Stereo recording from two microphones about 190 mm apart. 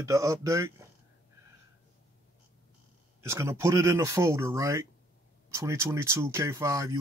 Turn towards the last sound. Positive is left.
turn(degrees=-15)  # may be behind; listen again after turning